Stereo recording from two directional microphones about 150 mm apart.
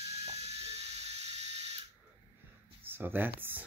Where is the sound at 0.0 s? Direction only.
45° right (ahead or behind).